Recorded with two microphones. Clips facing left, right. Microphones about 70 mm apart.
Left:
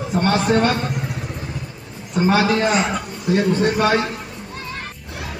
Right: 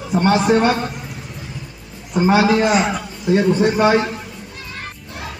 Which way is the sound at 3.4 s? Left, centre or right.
Centre.